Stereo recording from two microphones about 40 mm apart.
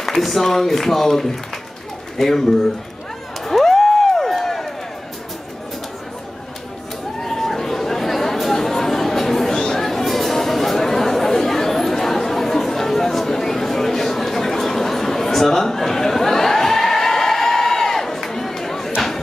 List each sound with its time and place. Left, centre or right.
0.0 s speech: centre
3.4 s a sound: centre
7.2 s chatter: centre